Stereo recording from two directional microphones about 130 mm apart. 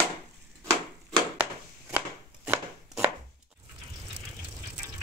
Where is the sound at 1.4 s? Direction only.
15° right (ahead or behind).